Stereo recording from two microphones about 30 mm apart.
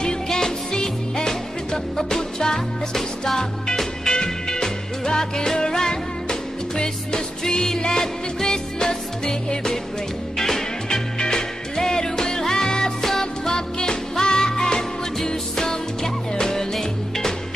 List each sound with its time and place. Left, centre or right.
0.3 s music: left
14.5 s music: centre